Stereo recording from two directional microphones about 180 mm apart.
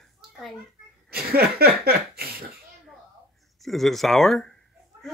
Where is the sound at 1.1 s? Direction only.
60° right (ahead or behind).